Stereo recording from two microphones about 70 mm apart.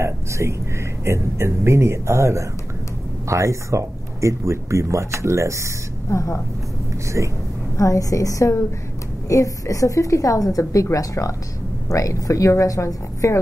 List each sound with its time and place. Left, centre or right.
0.0 s speech: right
6.0 s a woman's voice: left
7.2 s speech: right
7.7 s a woman's voice: left